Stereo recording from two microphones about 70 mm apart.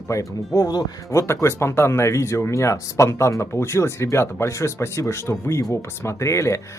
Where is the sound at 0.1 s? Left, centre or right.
Left.